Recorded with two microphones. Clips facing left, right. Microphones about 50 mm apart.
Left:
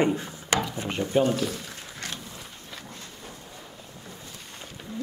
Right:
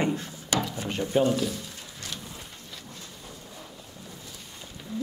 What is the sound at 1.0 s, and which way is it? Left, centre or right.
Speech, left.